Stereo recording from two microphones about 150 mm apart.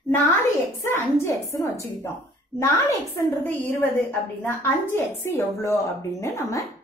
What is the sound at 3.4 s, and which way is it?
A woman's voice, 10° left (ahead or behind).